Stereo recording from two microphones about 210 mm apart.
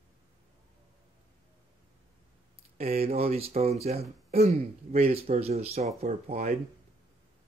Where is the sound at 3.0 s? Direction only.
30° right (ahead or behind).